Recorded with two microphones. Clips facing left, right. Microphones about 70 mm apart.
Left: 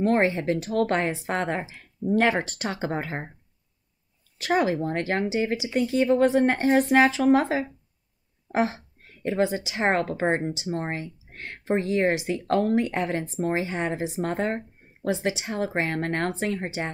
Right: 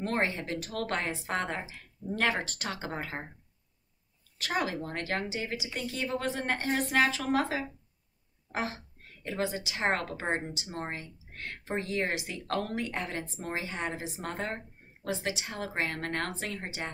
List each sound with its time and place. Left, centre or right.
0.0 s speech: left
4.4 s speech: left